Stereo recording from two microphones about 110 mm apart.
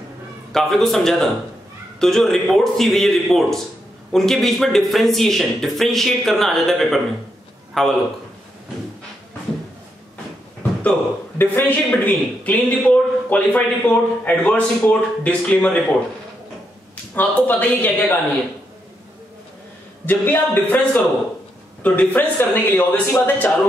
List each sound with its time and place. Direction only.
0.5 s speech: 5° left (ahead or behind)
10.8 s a man's voice: 15° left (ahead or behind)
17.1 s a man's voice: 15° left (ahead or behind)
20.1 s a man's voice: 15° left (ahead or behind)